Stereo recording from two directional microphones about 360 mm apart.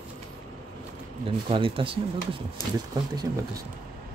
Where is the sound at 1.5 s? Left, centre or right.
Centre.